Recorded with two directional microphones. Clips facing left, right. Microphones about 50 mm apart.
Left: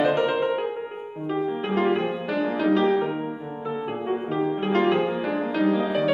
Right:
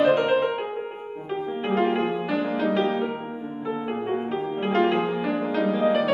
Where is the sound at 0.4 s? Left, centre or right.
Centre.